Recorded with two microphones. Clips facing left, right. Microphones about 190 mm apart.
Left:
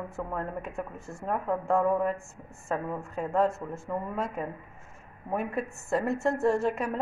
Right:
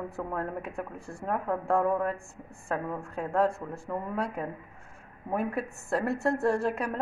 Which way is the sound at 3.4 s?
30° right (ahead or behind).